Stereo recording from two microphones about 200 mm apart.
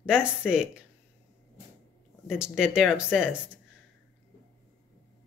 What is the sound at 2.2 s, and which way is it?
Speech, 5° right (ahead or behind).